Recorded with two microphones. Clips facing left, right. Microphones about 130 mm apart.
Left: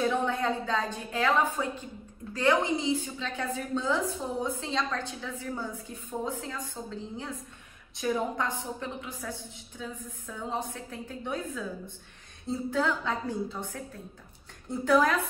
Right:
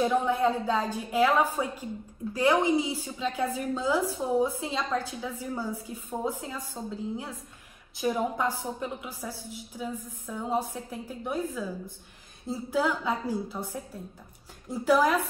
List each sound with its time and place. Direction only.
0.0 s a woman's voice: 5° right (ahead or behind)
14.7 s a woman's voice: 5° right (ahead or behind)